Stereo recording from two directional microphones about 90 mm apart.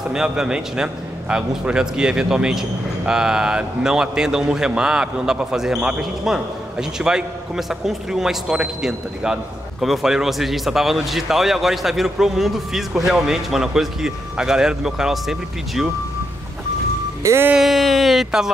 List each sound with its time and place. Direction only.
0.1 s a man's voice: 5° right (ahead or behind)
17.2 s music: 30° right (ahead or behind)
17.6 s a man's voice: centre (ahead or behind)